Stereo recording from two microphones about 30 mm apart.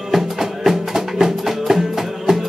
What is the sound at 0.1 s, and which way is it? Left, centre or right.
Music, centre.